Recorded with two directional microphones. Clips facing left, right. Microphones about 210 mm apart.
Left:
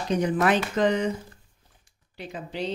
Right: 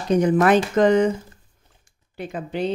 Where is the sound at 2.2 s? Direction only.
55° right (ahead or behind).